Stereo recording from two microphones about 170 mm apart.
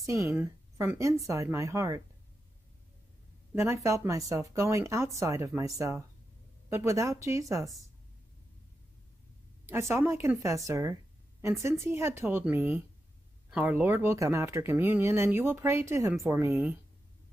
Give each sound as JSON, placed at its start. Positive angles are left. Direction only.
{"t": 0.3, "sound": "speech", "side_deg": -10}
{"t": 3.5, "sound": "speech", "side_deg": -15}
{"t": 9.7, "sound": "speech", "side_deg": -15}